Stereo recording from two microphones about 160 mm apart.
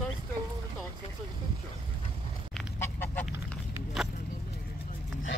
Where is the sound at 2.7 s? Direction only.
15° left (ahead or behind).